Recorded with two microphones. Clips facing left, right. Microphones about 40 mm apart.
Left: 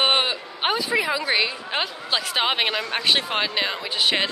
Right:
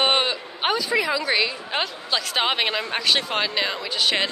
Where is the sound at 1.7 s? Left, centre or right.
Centre.